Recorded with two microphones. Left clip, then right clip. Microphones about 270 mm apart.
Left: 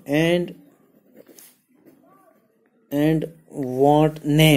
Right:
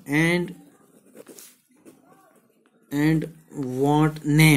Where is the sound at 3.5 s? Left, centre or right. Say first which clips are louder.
Left 5 dB; centre.